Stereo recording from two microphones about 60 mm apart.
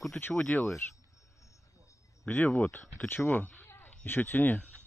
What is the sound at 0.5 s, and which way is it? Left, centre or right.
Speech, left.